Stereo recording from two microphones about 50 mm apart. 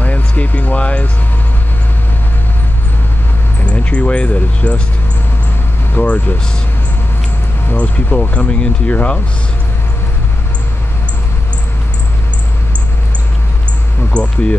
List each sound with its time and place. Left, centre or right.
0.0 s music: left
3.6 s speech: left
6.0 s speech: left
7.7 s speech: left
14.1 s speech: left